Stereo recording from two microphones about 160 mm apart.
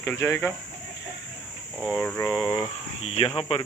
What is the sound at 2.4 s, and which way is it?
Speech, 30° left (ahead or behind).